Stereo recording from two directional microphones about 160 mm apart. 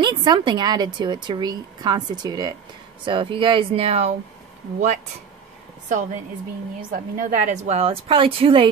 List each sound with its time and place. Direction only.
0.0 s a woman's voice: 30° right (ahead or behind)
5.9 s a woman's voice: 50° right (ahead or behind); by 8.6 s 35° right (ahead or behind)